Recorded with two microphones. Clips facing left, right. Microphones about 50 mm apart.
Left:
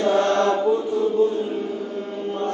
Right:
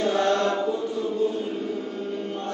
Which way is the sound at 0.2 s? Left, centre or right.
Left.